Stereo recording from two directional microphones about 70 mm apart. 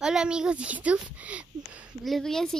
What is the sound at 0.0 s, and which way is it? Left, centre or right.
A child's voice, centre.